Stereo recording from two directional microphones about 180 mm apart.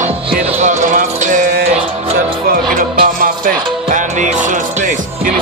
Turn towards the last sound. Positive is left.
turn(degrees=-45)  # may be behind; listen again after turning